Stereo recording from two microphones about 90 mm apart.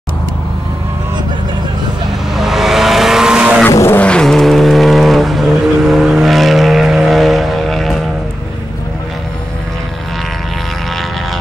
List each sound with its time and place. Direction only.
2.3 s vehicle: 5° right (ahead or behind)
3.7 s vehicle: 30° left (ahead or behind)
4.0 s vehicle: 10° left (ahead or behind)